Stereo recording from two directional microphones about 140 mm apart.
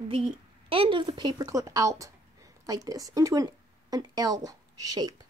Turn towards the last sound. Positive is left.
turn(degrees=-25)  # may be behind; listen again after turning